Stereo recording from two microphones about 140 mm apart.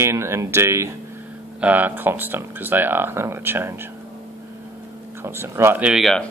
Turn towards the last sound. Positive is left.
turn(degrees=0)  # may be behind; listen again after turning